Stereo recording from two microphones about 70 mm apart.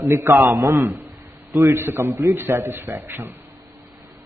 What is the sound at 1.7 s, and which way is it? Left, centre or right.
Speech, right.